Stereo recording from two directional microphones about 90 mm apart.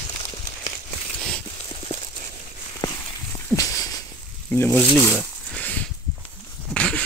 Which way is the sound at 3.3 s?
35° left (ahead or behind).